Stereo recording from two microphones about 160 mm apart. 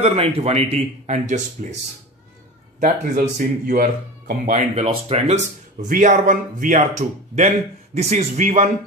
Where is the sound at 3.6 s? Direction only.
60° right (ahead or behind).